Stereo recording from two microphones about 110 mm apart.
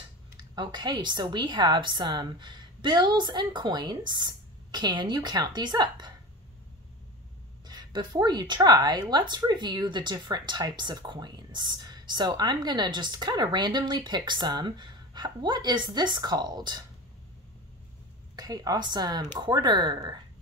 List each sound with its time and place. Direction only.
0.4 s speech: 45° right (ahead or behind)
7.6 s speech: 40° right (ahead or behind)
18.3 s speech: 35° right (ahead or behind)